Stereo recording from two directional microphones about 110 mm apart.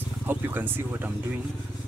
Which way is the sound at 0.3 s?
20° right (ahead or behind).